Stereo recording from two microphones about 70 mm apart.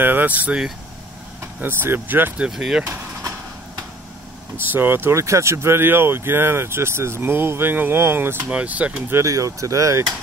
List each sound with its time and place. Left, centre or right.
0.0 s speech: right
1.6 s speech: right
2.3 s speech: centre
2.8 s vehicle: right
4.6 s speech: right
8.5 s speech: centre
9.1 s speech: right